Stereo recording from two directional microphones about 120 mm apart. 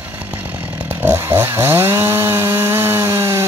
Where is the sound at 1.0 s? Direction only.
20° right (ahead or behind).